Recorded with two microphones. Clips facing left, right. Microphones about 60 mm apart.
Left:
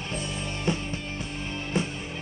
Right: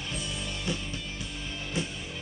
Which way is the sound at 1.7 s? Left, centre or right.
Left.